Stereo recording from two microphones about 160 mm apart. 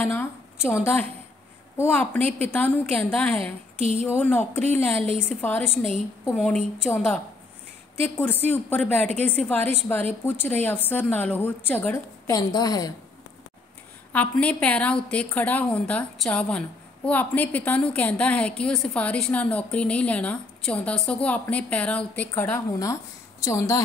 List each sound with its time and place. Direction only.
0.0 s a woman's voice: 15° left (ahead or behind)
8.2 s a woman's voice: 15° left (ahead or behind)
12.3 s a woman's voice: 25° left (ahead or behind)
14.1 s a woman's voice: 10° left (ahead or behind)